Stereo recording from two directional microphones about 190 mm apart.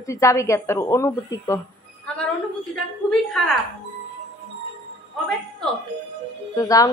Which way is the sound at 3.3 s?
Centre (ahead or behind).